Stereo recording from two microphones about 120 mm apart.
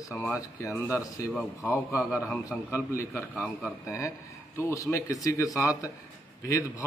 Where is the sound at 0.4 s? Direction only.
25° left (ahead or behind).